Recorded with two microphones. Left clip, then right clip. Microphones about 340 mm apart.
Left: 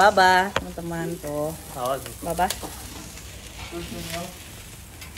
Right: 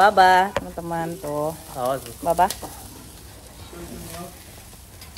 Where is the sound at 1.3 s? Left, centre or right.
Right.